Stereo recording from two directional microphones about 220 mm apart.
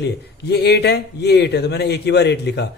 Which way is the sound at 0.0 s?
50° left (ahead or behind).